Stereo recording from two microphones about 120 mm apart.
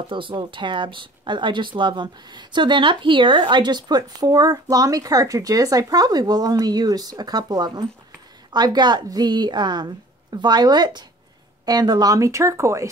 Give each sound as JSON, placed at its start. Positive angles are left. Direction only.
{"t": 0.1, "sound": "speech", "side_deg": -45}